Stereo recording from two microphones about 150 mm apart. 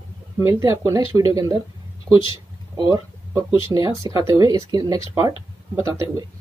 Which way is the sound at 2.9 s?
25° right (ahead or behind).